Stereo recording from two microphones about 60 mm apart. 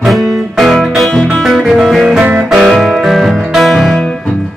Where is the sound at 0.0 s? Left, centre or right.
Centre.